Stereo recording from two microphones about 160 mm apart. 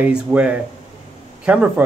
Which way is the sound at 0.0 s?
10° right (ahead or behind).